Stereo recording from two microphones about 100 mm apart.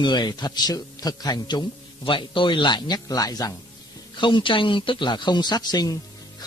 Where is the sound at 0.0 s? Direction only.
45° left (ahead or behind).